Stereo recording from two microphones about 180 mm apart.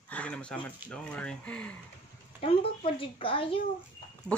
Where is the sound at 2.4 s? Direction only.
30° left (ahead or behind).